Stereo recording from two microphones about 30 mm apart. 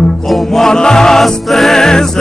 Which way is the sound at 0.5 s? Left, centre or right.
Left.